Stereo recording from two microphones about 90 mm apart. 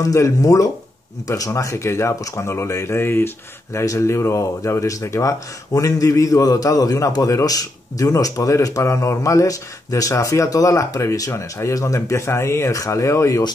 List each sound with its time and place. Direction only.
0.0 s speech: 35° left (ahead or behind)